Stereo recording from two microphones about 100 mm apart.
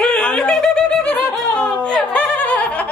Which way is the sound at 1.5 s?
10° left (ahead or behind).